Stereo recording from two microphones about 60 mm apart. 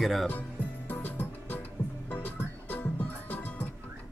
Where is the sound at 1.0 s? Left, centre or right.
Left.